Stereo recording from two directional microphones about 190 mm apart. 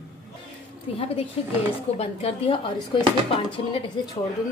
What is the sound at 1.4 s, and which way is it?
A woman's voice, 30° left (ahead or behind).